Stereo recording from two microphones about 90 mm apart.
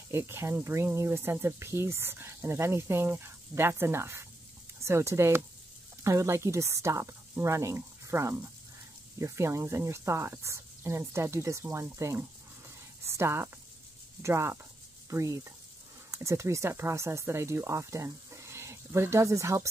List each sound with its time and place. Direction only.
0.1 s speech: 30° right (ahead or behind)